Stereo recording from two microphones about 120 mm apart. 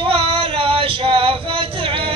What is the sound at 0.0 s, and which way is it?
Male singing, 50° right (ahead or behind).